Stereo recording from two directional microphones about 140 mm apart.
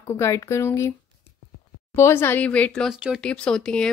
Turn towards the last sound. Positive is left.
turn(degrees=5)  # may be behind; listen again after turning